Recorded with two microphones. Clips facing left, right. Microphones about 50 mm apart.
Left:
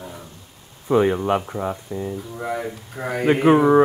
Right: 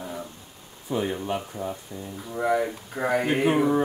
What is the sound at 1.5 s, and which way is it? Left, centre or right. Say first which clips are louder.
Speech: left 6 dB; left.